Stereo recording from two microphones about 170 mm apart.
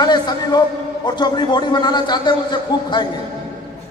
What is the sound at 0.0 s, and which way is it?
A man's voice, 25° left (ahead or behind).